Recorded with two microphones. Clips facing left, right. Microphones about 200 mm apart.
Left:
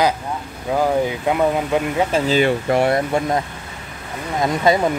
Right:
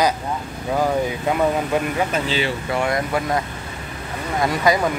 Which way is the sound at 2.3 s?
50° left (ahead or behind).